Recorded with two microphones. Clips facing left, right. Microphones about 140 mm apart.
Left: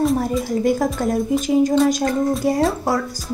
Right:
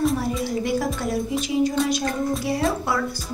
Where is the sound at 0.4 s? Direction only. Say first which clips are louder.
Left 5 dB; 45° left (ahead or behind).